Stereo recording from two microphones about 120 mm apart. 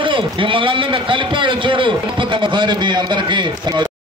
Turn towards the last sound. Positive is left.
turn(degrees=-40)  # may be behind; listen again after turning